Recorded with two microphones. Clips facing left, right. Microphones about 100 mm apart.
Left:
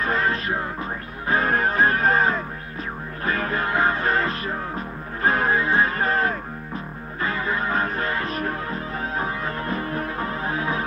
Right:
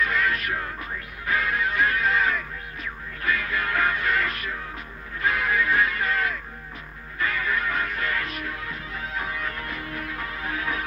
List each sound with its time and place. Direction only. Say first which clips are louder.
0.0 s music: left 2 dB; 35° left (ahead or behind)